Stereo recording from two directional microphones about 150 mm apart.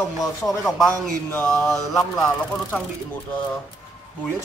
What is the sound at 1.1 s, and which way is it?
Mantra, 10° left (ahead or behind).